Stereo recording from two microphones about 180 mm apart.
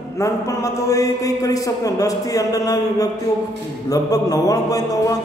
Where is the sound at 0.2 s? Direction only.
15° left (ahead or behind).